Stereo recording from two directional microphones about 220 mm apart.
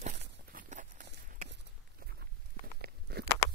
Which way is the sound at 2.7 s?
45° right (ahead or behind).